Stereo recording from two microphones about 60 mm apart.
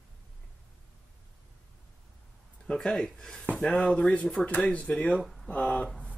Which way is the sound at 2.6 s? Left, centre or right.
Centre.